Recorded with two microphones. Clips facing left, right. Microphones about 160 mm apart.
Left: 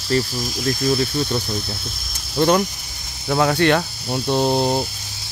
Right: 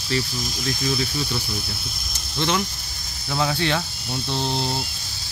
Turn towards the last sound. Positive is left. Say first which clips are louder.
# left 8 dB
turn(degrees=45)  # may be behind; listen again after turning